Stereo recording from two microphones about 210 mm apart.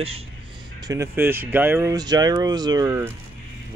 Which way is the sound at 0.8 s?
15° right (ahead or behind).